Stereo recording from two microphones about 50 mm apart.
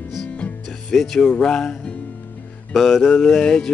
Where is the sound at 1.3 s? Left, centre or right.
Centre.